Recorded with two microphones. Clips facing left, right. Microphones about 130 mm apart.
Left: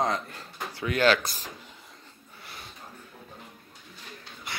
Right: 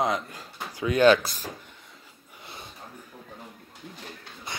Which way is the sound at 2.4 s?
20° right (ahead or behind).